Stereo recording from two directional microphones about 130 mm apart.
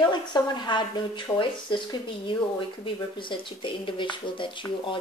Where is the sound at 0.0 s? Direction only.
35° left (ahead or behind).